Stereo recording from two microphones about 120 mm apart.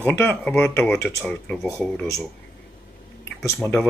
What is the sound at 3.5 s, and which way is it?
Speech, 5° left (ahead or behind).